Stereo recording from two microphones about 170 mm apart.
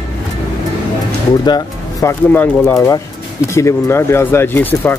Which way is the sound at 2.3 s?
10° left (ahead or behind).